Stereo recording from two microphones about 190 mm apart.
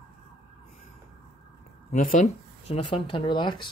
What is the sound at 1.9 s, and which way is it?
Speech, 45° left (ahead or behind).